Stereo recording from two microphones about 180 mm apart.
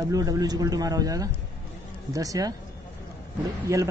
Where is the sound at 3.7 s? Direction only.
15° right (ahead or behind).